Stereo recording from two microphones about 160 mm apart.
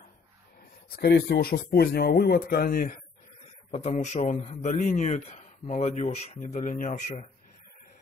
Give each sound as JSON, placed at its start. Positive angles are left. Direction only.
{"t": 0.9, "sound": "speech", "side_deg": 80}
{"t": 3.7, "sound": "a man's voice", "side_deg": 45}